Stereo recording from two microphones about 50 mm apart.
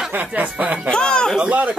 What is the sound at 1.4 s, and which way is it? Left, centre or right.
Speech, right.